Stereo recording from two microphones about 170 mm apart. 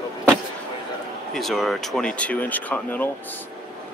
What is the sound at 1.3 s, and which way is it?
Speech, centre (ahead or behind).